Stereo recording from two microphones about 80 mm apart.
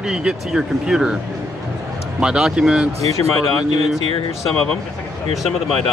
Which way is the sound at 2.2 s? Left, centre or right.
Centre.